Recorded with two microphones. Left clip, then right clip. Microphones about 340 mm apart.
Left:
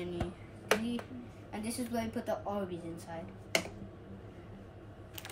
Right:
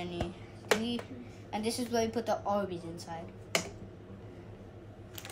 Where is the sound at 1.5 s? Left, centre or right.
Centre.